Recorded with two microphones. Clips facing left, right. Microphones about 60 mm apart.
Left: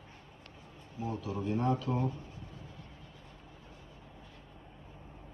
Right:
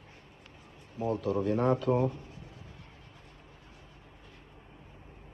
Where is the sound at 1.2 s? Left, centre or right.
Right.